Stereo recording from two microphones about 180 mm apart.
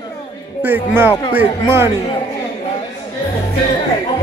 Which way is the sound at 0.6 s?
10° right (ahead or behind).